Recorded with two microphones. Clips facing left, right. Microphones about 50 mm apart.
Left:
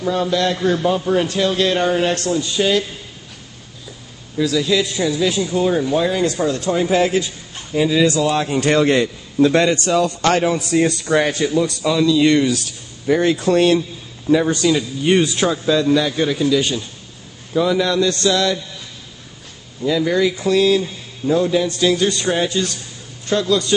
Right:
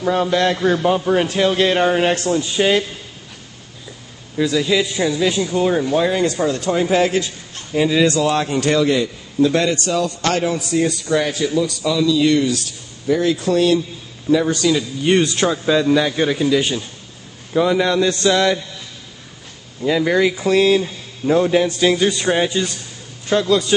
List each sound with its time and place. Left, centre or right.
0.0 s a man's voice: right
4.4 s a man's voice: centre
8.9 s a man's voice: left
10.7 s a man's voice: left
11.1 s a man's voice: left
14.3 s a man's voice: centre
14.8 s speech: centre
15.6 s a man's voice: centre; by 18.6 s right
19.8 s a man's voice: right
21.6 s a man's voice: right